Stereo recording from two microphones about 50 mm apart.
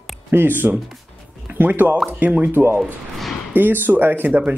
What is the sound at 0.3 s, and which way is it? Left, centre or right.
Speech, right.